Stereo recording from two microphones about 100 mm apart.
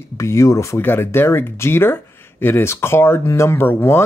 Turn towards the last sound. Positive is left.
turn(degrees=20)  # may be behind; listen again after turning